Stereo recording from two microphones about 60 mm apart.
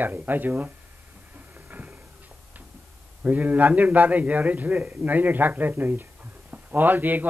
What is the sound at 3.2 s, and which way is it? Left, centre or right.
A man's voice, right.